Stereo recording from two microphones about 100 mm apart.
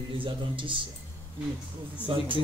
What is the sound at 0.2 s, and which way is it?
Speech, 60° right (ahead or behind).